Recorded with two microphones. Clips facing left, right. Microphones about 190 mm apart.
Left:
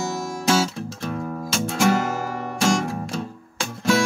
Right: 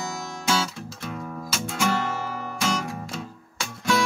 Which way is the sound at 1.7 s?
45° left (ahead or behind).